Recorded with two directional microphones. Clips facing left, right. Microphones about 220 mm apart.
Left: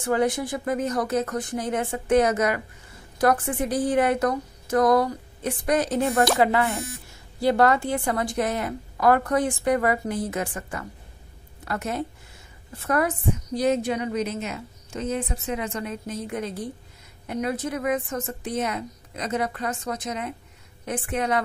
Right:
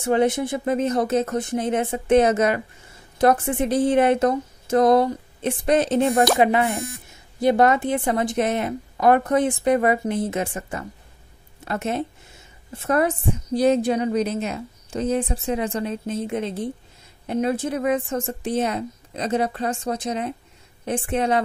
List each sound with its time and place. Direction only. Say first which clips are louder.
0.0 s a woman's voice: right 3 dB; 25° right (ahead or behind)